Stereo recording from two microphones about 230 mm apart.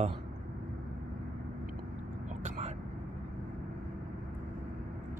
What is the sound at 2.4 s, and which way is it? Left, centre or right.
Vehicle, right.